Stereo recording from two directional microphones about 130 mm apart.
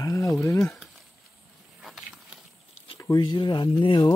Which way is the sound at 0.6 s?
Centre (ahead or behind).